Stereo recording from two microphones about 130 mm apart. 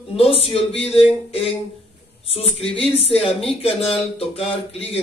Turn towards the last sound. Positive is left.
turn(degrees=50)  # may be behind; listen again after turning